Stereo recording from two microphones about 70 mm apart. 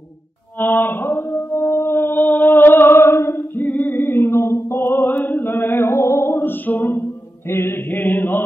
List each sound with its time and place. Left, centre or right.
0.6 s mantra: left